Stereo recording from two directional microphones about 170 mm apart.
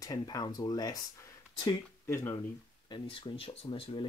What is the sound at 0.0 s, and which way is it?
Speech, 20° left (ahead or behind).